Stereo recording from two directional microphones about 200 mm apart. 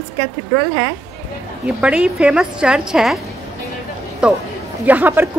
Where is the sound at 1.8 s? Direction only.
5° right (ahead or behind).